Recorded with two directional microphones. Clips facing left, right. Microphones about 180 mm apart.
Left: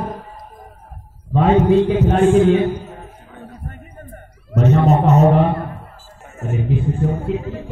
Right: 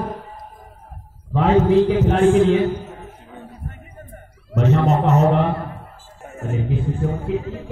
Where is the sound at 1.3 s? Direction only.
25° left (ahead or behind).